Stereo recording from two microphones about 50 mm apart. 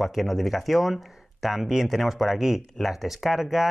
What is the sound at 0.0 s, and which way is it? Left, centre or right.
Speech, centre.